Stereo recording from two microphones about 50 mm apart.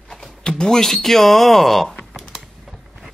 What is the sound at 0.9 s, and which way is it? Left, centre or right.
Speech, centre.